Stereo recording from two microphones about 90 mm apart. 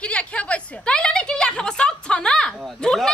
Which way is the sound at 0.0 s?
15° left (ahead or behind).